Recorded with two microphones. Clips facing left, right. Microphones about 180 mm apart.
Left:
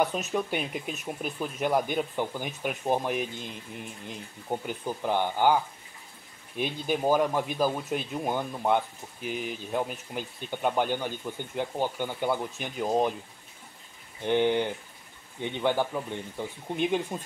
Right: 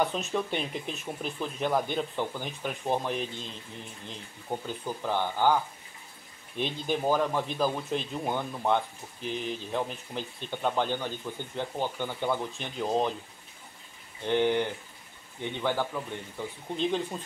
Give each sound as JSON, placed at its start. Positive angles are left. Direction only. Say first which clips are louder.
{"t": 0.0, "sound": "speech", "louder": "left 1 dB", "side_deg": 5}
{"t": 14.2, "sound": "speech", "louder": "left 1 dB", "side_deg": 15}